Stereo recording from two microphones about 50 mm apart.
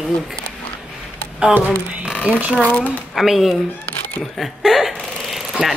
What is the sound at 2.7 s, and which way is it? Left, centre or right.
Speech, left.